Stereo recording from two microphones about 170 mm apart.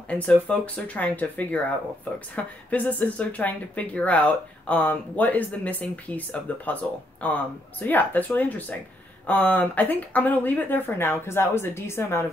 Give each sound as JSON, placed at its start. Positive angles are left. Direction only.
{"t": 0.1, "sound": "speech", "side_deg": 10}